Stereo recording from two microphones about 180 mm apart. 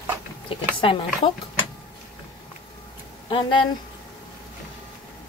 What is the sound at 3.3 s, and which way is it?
Speech, 30° left (ahead or behind).